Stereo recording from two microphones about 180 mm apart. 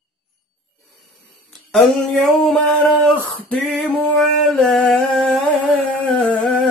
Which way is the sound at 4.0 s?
5° left (ahead or behind).